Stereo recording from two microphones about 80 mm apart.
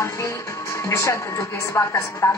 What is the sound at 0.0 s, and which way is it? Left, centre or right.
Speech, left.